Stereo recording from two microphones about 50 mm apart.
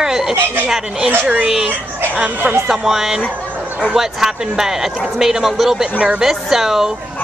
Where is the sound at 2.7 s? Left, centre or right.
Centre.